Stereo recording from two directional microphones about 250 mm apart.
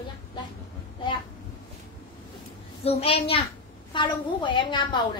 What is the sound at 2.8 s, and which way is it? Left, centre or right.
A woman's voice, left.